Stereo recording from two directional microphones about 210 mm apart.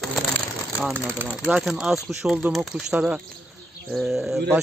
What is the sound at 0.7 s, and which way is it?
Speech, 10° right (ahead or behind).